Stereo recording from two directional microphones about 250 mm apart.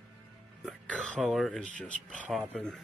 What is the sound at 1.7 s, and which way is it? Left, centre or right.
Speech, left.